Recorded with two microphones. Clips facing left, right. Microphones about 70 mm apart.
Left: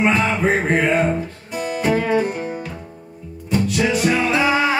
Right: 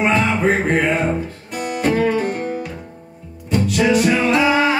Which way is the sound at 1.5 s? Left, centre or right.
Right.